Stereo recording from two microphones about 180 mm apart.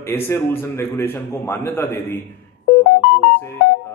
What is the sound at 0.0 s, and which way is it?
A man's voice, 15° left (ahead or behind).